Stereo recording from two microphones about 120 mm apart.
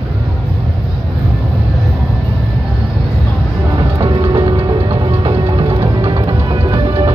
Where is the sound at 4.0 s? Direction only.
40° right (ahead or behind).